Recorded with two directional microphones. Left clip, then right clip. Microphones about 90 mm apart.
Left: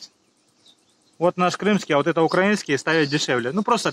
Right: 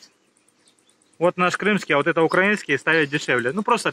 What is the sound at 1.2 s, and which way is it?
Speech, 30° left (ahead or behind).